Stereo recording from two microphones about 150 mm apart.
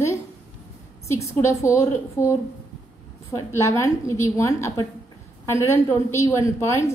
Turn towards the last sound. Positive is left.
turn(degrees=20)  # may be behind; listen again after turning